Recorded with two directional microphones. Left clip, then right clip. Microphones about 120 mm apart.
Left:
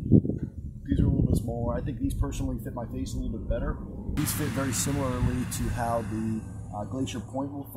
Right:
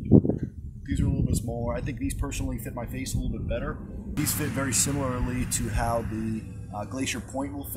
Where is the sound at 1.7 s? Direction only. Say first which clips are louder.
Even; centre (ahead or behind).